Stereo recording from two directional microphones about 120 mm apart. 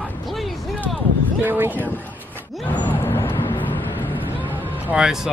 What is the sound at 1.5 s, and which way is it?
Speech, 15° right (ahead or behind).